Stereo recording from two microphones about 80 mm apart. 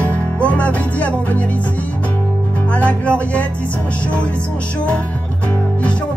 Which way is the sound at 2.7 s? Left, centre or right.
Centre.